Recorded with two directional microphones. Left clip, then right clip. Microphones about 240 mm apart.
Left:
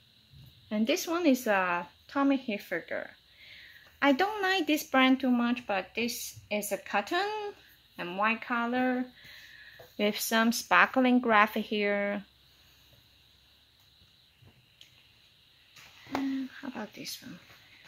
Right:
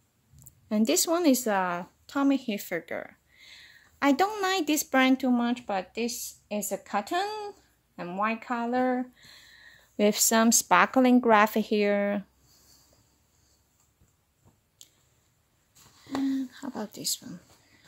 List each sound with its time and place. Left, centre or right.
0.7 s speech: right
16.3 s whispering: right